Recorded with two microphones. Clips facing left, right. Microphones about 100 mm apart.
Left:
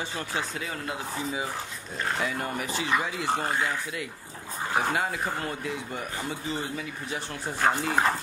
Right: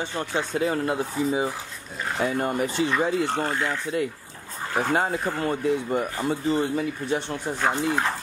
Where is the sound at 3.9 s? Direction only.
40° right (ahead or behind).